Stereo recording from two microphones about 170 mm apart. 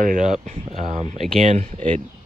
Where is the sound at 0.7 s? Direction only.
40° right (ahead or behind).